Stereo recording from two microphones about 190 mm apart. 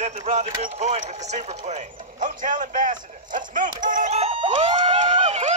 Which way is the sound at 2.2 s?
45° right (ahead or behind).